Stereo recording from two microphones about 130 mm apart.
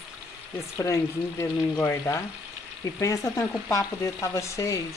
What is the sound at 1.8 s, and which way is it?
Frying, 20° left (ahead or behind).